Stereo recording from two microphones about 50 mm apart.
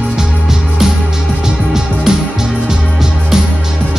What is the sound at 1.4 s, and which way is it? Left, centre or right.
Music, centre.